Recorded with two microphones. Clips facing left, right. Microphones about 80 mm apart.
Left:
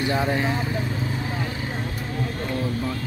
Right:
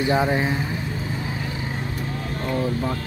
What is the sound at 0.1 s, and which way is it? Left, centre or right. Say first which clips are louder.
Speech: right 4 dB; centre.